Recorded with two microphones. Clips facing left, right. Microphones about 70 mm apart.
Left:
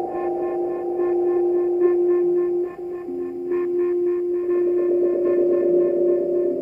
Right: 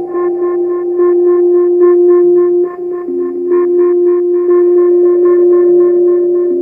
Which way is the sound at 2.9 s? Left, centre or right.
Right.